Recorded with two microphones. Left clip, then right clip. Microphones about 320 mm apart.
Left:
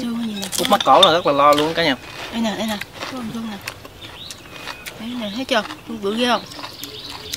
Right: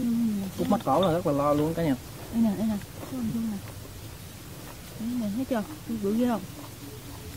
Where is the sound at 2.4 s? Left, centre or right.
Left.